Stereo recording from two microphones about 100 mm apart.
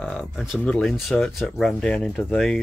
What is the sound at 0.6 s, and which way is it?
Speech, 10° left (ahead or behind).